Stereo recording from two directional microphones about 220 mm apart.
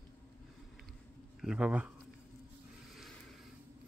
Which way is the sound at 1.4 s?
5° right (ahead or behind).